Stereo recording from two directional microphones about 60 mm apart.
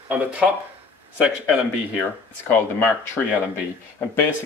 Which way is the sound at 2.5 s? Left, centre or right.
Left.